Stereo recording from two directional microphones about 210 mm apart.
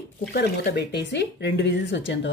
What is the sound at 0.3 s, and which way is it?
Speech, 50° left (ahead or behind).